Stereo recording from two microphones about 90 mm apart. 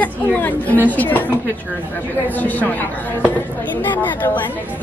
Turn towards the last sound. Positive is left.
turn(degrees=20)  # may be behind; listen again after turning